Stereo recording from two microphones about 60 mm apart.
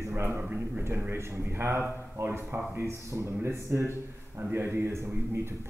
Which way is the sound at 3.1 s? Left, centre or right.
Right.